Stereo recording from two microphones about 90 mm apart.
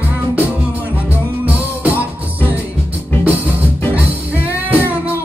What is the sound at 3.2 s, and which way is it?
Music, 20° right (ahead or behind).